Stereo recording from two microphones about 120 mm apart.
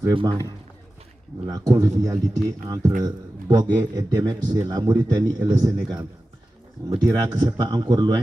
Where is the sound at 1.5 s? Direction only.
30° right (ahead or behind).